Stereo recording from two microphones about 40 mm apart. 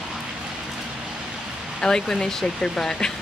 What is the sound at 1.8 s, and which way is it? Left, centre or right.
Speech, centre.